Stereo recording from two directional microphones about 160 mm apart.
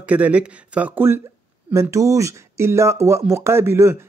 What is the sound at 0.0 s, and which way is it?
Speech, 10° right (ahead or behind).